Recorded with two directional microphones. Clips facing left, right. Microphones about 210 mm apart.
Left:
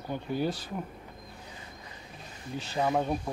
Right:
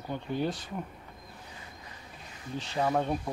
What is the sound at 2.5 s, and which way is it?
Speech, 5° left (ahead or behind).